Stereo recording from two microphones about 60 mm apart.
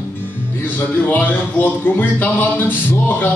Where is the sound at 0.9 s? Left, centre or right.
Left.